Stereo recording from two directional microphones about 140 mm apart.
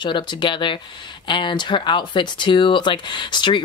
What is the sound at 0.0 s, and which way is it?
Speech, 35° left (ahead or behind).